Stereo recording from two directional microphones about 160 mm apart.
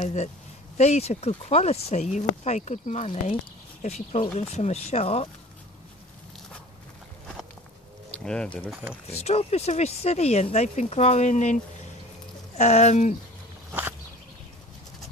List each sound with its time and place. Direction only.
0.0 s speech: 45° left (ahead or behind)
8.1 s speech: 5° left (ahead or behind)
9.2 s speech: 40° left (ahead or behind)
13.7 s walk: 15° right (ahead or behind)